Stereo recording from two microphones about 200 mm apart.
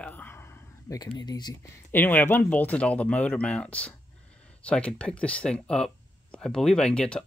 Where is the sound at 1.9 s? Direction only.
10° left (ahead or behind).